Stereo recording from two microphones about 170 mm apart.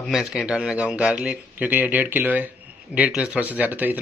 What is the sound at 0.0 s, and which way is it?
A man's voice, centre (ahead or behind).